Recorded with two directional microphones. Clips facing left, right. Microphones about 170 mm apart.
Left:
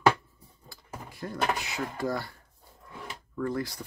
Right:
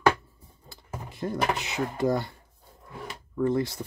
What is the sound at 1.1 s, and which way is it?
Speech, 20° right (ahead or behind).